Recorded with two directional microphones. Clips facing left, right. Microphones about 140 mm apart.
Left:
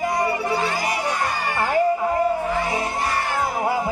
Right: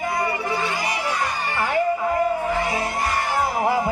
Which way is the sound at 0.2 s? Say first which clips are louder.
Left 2 dB; 35° left (ahead or behind).